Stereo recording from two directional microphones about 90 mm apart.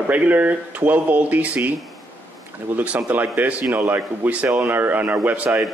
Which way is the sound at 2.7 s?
20° right (ahead or behind).